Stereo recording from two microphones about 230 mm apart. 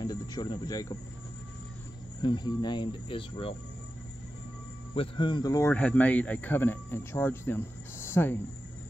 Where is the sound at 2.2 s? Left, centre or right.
Centre.